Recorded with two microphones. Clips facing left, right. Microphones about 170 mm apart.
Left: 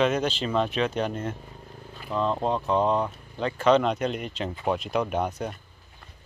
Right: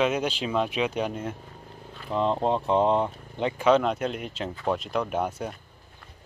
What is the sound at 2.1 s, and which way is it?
Speech, 20° right (ahead or behind).